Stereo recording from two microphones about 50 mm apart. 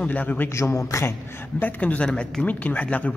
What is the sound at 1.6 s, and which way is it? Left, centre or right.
Speech, left.